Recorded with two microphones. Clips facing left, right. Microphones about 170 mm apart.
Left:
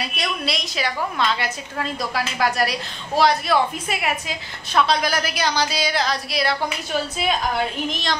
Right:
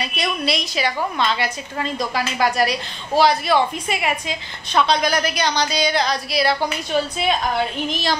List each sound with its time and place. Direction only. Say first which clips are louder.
0.0 s a woman's voice: right 3 dB; centre (ahead or behind)